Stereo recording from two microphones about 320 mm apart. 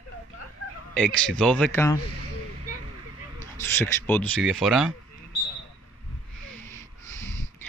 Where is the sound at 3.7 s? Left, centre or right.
Centre.